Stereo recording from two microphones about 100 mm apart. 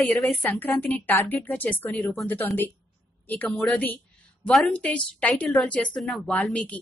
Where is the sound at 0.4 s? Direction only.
15° left (ahead or behind).